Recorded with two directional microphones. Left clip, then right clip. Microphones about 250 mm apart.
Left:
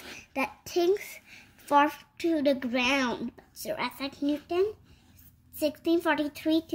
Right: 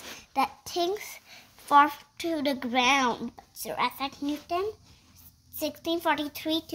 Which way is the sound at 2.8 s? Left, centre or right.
Centre.